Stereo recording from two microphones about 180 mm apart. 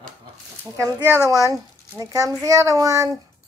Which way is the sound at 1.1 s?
20° right (ahead or behind).